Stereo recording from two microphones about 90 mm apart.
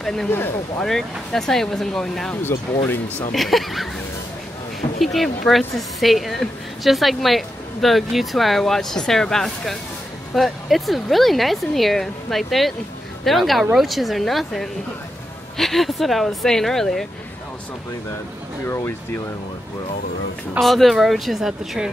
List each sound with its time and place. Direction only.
0.0 s a woman's voice: 5° left (ahead or behind)
2.5 s speech: 30° left (ahead or behind)
3.3 s a woman's voice: centre (ahead or behind)
5.0 s a woman's voice: centre (ahead or behind)
20.6 s a woman's voice: centre (ahead or behind)